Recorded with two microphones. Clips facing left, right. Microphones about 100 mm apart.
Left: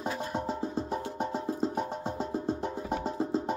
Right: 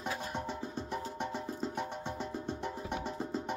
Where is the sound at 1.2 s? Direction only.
35° left (ahead or behind).